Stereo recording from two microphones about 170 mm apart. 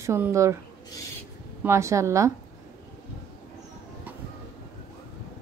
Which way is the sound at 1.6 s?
15° right (ahead or behind).